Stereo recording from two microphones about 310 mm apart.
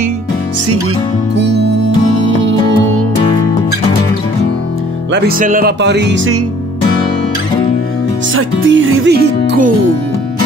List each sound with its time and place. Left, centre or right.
1.3 s music: right
5.1 s speech: right
8.4 s speech: right